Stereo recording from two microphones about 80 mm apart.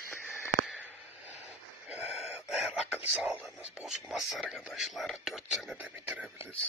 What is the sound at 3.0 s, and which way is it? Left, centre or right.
Speech, centre.